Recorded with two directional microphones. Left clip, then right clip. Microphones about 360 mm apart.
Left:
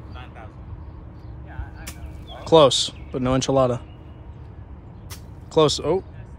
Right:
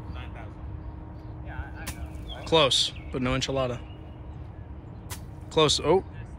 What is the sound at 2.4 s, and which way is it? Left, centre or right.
Speech, centre.